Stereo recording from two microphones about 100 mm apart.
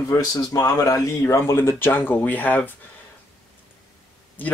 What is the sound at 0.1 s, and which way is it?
Speech, 40° left (ahead or behind).